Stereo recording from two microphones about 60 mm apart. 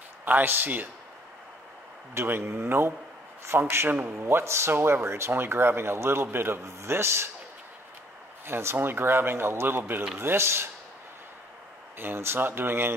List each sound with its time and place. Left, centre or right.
0.2 s speech: right
2.1 s speech: right
8.5 s speech: right
10.1 s speech: right
12.0 s speech: right